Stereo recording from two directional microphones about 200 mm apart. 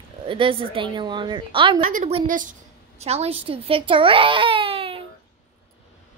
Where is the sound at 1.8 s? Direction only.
40° right (ahead or behind).